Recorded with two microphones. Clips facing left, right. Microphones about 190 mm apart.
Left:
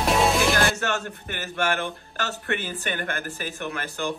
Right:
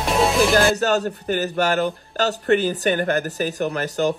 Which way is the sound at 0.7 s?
40° right (ahead or behind).